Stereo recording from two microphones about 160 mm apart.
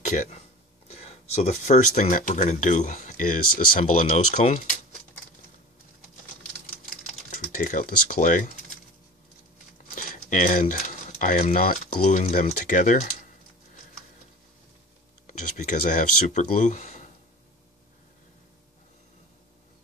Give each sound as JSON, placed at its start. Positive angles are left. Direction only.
{"t": 0.1, "sound": "speech", "side_deg": 55}
{"t": 0.8, "sound": "speech", "side_deg": 40}
{"t": 7.2, "sound": "speech", "side_deg": 55}
{"t": 9.9, "sound": "speech", "side_deg": 55}
{"t": 15.2, "sound": "speech", "side_deg": 50}